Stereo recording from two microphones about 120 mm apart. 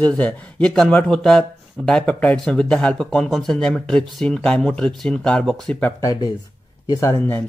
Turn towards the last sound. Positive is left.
turn(degrees=20)  # may be behind; listen again after turning